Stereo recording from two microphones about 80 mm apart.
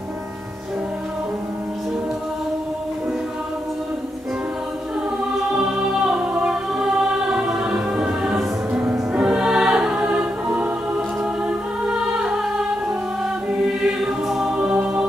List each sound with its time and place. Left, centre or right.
5.6 s choir: centre
9.1 s music: centre
10.0 s choir: centre
11.4 s music: centre
13.7 s music: centre